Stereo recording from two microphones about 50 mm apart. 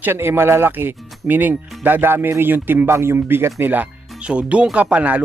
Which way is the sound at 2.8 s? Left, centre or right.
Right.